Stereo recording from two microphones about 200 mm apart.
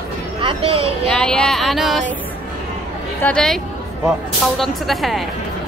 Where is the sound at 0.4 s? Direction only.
25° right (ahead or behind).